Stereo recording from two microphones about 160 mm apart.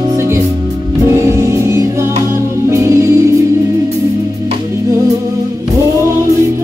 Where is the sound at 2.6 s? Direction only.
20° right (ahead or behind).